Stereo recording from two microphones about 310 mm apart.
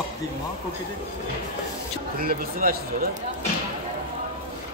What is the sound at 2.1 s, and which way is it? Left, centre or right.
Speech, right.